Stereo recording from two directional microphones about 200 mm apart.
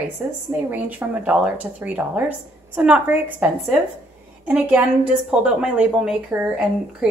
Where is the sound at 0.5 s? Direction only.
10° right (ahead or behind).